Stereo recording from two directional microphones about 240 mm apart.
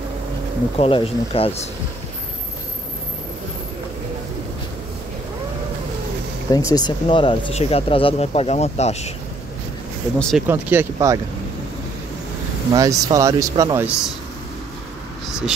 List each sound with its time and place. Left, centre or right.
0.7 s speech: left
6.5 s speech: centre
10.1 s speech: centre
12.7 s speech: centre